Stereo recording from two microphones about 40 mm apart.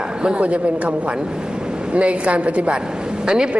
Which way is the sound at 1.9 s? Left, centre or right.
Right.